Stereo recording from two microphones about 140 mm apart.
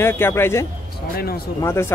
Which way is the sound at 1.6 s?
20° left (ahead or behind).